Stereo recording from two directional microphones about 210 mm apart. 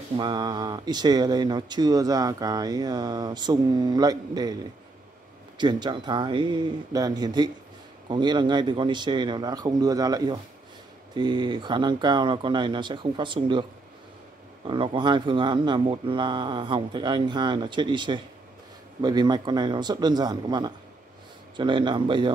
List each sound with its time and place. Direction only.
0.2 s speech: 20° right (ahead or behind)
5.6 s speech: 20° right (ahead or behind)